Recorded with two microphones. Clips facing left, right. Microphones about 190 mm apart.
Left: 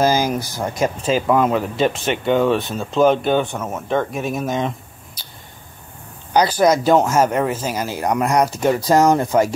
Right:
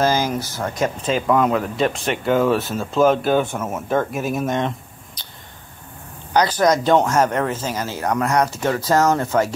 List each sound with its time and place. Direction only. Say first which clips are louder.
0.0 s speech: left 2 dB; 10° left (ahead or behind)
6.3 s speech: left 2 dB; 10° left (ahead or behind)